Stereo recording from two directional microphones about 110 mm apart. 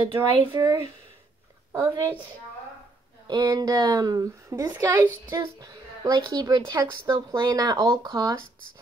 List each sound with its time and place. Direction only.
0.0 s a woman's voice: 30° right (ahead or behind)
1.7 s a woman's voice: 20° right (ahead or behind)
3.3 s a woman's voice: 40° right (ahead or behind); by 5.1 s 20° right (ahead or behind)
5.3 s a woman's voice: 35° right (ahead or behind)